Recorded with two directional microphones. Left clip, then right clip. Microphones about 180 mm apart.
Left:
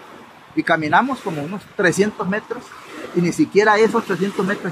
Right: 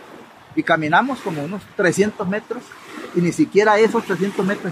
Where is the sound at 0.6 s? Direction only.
Centre (ahead or behind).